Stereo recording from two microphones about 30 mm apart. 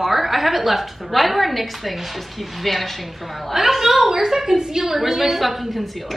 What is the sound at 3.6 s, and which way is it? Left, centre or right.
A woman's voice, centre.